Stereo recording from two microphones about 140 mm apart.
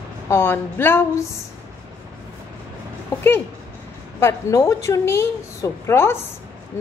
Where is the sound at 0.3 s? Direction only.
15° left (ahead or behind).